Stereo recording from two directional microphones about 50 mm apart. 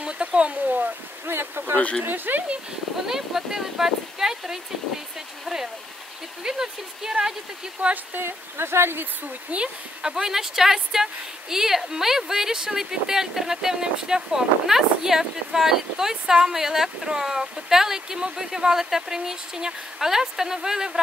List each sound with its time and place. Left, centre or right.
0.0 s a sound: right
1.2 s speech: right
3.1 s a woman's voice: centre
8.2 s speech: right
9.5 s speech: right
10.0 s a woman's voice: centre